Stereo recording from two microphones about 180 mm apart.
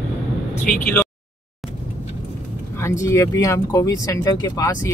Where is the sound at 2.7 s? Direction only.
15° left (ahead or behind).